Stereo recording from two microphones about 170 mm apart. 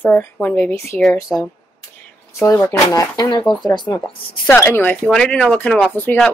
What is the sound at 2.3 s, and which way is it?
Speech, 15° left (ahead or behind).